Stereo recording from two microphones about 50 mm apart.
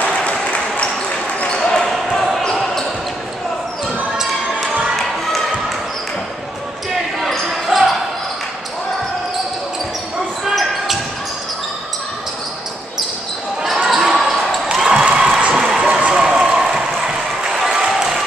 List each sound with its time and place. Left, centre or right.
0.0 s a sound: left
1.4 s basketball bounce: centre
7.2 s basketball bounce: centre
10.5 s basketball bounce: centre
13.8 s basketball bounce: centre
15.5 s a sound: centre